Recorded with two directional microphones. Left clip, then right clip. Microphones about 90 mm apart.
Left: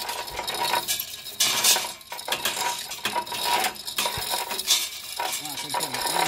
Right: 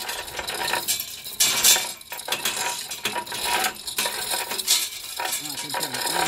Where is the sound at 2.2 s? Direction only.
10° right (ahead or behind).